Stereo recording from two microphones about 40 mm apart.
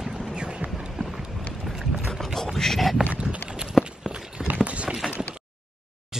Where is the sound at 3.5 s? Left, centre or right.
Centre.